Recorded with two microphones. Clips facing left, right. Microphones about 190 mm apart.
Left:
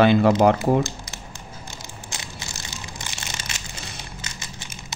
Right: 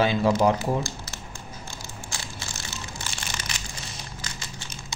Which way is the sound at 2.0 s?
20° left (ahead or behind).